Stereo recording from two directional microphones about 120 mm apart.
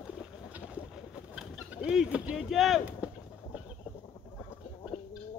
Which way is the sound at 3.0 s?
10° right (ahead or behind).